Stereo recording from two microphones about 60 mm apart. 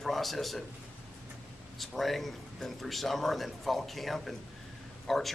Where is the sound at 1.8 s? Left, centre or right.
Centre.